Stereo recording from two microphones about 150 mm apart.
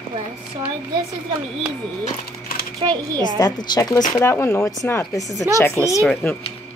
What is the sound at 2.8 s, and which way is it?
Speech, 35° right (ahead or behind).